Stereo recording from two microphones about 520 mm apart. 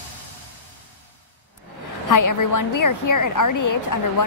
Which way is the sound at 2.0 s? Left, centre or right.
Left.